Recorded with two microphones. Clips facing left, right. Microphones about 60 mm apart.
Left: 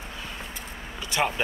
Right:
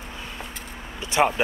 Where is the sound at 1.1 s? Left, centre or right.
Centre.